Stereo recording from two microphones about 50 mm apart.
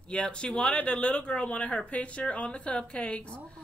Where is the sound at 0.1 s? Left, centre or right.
Left.